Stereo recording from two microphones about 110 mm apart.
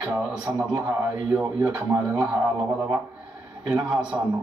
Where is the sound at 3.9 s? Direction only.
10° right (ahead or behind).